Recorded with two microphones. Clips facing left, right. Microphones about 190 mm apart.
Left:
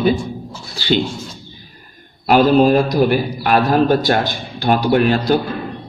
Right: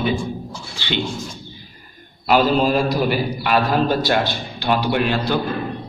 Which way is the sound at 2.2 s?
50° left (ahead or behind).